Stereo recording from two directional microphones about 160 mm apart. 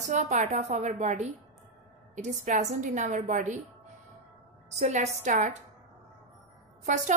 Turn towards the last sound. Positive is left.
turn(degrees=-50)  # may be behind; listen again after turning